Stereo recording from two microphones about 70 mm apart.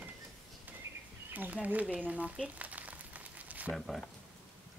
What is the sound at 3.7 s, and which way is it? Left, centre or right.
Speech, centre.